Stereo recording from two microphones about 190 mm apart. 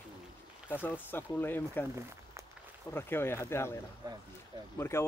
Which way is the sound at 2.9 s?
10° left (ahead or behind).